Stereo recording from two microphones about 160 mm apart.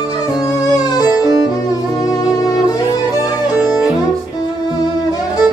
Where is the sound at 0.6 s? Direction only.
25° left (ahead or behind).